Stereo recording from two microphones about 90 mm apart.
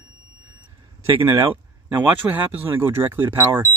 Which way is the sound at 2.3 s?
20° right (ahead or behind).